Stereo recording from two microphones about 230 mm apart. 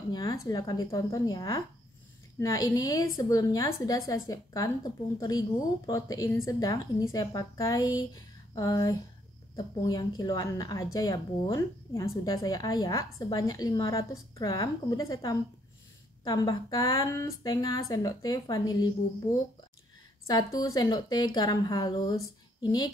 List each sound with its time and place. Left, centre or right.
0.1 s speech: centre
20.2 s speech: centre